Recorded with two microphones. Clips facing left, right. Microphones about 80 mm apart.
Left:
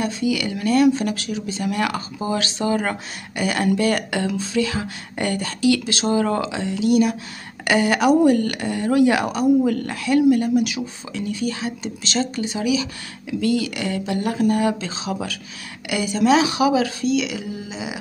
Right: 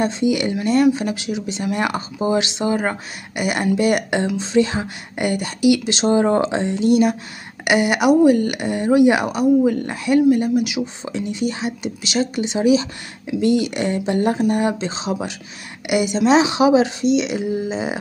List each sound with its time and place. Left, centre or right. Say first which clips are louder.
0.0 s speech: right 4 dB; right
0.9 s speech: right 1 dB; centre
5.1 s speech: right 2 dB; centre
7.6 s speech: right 1 dB; centre
11.1 s speech: even; right
17.6 s speech: right 8 dB; right